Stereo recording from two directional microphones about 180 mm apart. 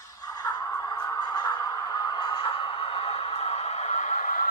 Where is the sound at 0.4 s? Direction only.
20° left (ahead or behind).